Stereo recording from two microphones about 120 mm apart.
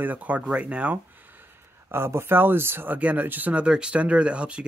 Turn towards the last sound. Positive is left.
turn(degrees=-10)  # may be behind; listen again after turning